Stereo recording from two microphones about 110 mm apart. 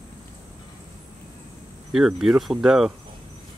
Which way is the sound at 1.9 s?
5° right (ahead or behind).